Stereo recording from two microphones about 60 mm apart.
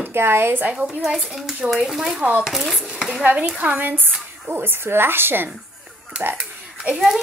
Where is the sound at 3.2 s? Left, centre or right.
Right.